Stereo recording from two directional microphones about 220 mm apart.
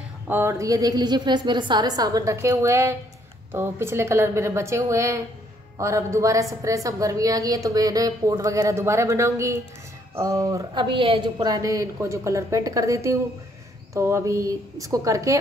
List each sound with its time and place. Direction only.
0.3 s a woman's voice: 10° right (ahead or behind)